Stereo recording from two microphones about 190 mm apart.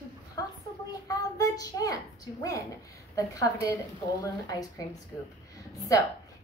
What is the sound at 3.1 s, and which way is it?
Speech, 15° left (ahead or behind).